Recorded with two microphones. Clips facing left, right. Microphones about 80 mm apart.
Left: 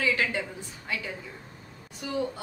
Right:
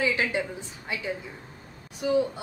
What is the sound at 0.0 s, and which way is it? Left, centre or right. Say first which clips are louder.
A woman's voice: right 1 dB; centre.